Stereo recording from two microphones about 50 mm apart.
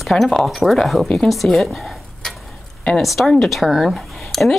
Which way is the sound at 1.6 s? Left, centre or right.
Centre.